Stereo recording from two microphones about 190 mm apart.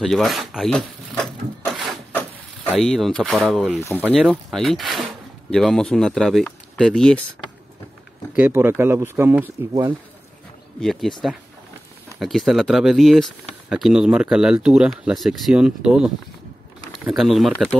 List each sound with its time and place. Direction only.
0.0 s speech: centre (ahead or behind)
8.4 s speech: 10° right (ahead or behind)
10.8 s speech: centre (ahead or behind)
12.2 s speech: centre (ahead or behind)